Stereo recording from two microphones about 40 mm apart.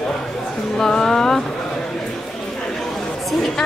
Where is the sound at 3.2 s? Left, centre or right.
Centre.